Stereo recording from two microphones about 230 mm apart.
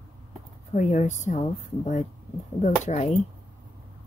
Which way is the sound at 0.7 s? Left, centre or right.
Left.